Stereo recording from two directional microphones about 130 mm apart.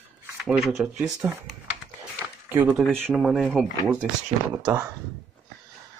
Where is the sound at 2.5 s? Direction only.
15° right (ahead or behind).